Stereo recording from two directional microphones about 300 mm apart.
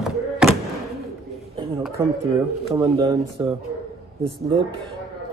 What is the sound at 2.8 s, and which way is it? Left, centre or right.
Speech, centre.